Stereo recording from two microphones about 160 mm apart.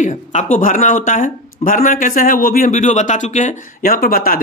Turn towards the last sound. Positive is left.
turn(degrees=65)  # may be behind; listen again after turning